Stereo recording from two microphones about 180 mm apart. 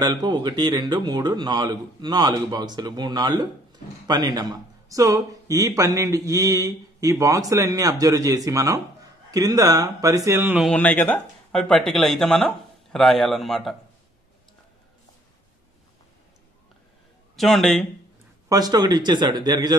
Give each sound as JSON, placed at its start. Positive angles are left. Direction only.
{"t": 0.0, "sound": "speech", "side_deg": -20}
{"t": 10.6, "sound": "speech", "side_deg": 5}
{"t": 17.4, "sound": "speech", "side_deg": 0}
{"t": 18.5, "sound": "speech", "side_deg": -20}